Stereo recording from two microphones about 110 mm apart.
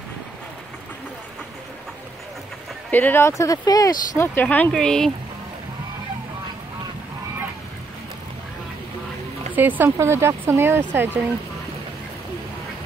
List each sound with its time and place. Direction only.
2.9 s speech: 15° left (ahead or behind); by 4.3 s 35° left (ahead or behind)
4.4 s speech: 15° left (ahead or behind)
9.6 s speech: 15° right (ahead or behind)